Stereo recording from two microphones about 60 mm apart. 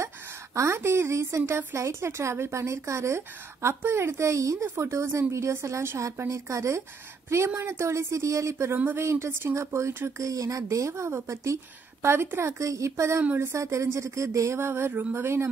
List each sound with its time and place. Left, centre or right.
0.6 s speech: right
7.2 s speech: right
8.7 s speech: right
9.0 s speech: right
10.1 s speech: right